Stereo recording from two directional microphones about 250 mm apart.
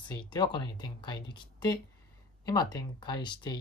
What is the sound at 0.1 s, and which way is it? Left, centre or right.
Speech, centre.